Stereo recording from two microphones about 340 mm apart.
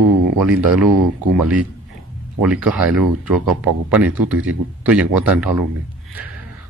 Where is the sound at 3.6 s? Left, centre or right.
Centre.